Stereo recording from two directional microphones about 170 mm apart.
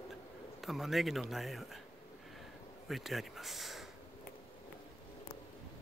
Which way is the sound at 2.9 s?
Centre (ahead or behind).